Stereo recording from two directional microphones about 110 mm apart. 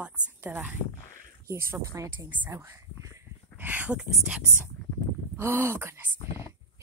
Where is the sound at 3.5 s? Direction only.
15° right (ahead or behind).